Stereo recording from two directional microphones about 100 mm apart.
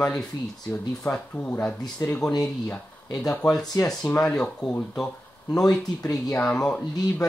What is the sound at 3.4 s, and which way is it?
Speech, 40° left (ahead or behind).